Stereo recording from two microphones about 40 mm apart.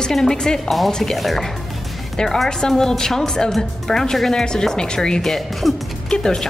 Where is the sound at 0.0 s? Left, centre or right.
Centre.